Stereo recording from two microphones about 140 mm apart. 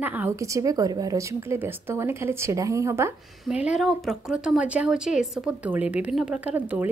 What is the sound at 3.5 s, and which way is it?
A woman's voice, 5° right (ahead or behind).